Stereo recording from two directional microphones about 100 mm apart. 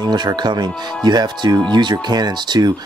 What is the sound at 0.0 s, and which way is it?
Speech, 45° right (ahead or behind).